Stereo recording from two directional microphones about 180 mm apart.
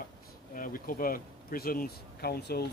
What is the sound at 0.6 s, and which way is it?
Speech, 50° left (ahead or behind).